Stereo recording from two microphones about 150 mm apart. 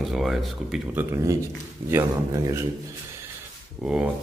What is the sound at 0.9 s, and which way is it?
Speech, 20° right (ahead or behind).